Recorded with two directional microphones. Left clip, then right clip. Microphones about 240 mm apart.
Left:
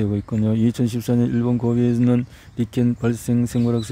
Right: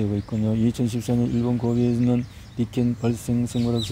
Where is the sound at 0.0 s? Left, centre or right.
Left.